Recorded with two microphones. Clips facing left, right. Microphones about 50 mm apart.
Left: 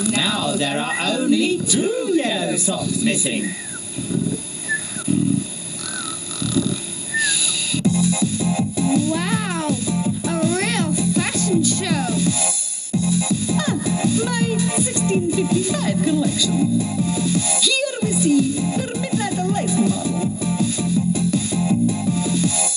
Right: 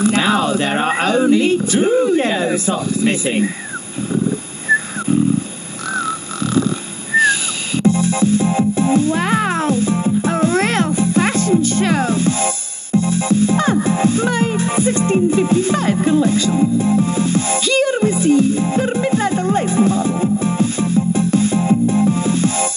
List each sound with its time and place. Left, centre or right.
0.0 s speech: right
4.1 s vehicle: right
5.9 s a sound: right
12.9 s music: right